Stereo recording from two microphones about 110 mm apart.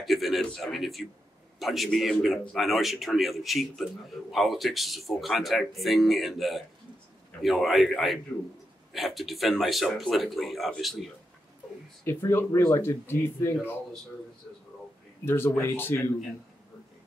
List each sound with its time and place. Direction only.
0.0 s a man's voice: centre (ahead or behind)
12.0 s speech: 25° left (ahead or behind)
15.2 s speech: 20° left (ahead or behind)